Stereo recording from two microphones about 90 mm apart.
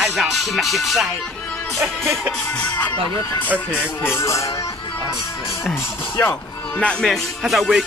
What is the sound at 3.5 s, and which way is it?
Speech, 25° left (ahead or behind).